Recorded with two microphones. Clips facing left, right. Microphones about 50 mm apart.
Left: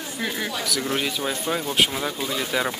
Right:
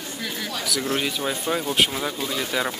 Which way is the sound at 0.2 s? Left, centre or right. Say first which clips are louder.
Left 4 dB; left.